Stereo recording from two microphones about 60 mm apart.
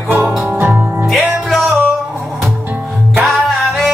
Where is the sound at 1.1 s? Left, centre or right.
Centre.